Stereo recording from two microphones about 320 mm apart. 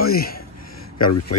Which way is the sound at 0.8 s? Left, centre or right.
Left.